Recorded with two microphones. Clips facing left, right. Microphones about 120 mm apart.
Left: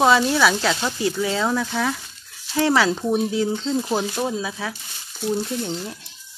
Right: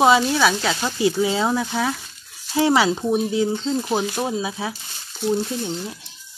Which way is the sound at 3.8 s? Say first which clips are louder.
Right 1 dB; 15° right (ahead or behind).